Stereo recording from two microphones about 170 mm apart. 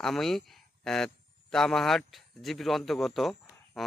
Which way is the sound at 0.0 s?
Centre (ahead or behind).